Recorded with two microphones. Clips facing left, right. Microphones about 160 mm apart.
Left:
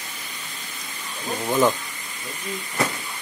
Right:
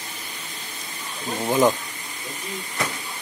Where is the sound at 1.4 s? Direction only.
10° right (ahead or behind).